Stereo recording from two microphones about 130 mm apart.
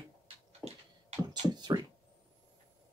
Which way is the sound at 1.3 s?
35° right (ahead or behind).